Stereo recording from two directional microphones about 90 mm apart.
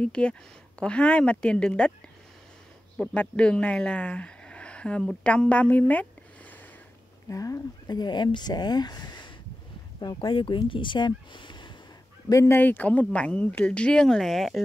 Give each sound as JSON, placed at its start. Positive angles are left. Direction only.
{"t": 0.0, "sound": "speech", "side_deg": 10}
{"t": 3.2, "sound": "speech", "side_deg": 10}
{"t": 7.2, "sound": "speech", "side_deg": 40}
{"t": 9.9, "sound": "speech", "side_deg": 65}
{"t": 12.3, "sound": "speech", "side_deg": 30}